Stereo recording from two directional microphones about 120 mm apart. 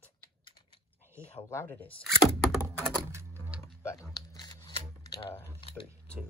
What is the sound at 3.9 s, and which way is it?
Shuffling cards, 30° left (ahead or behind).